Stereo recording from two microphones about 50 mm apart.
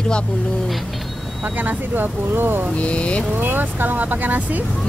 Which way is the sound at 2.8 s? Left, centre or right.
Left.